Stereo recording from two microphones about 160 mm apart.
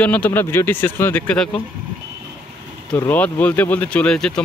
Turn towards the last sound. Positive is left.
turn(degrees=5)  # may be behind; listen again after turning